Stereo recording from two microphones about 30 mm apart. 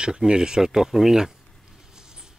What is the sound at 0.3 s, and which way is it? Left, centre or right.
Speech, right.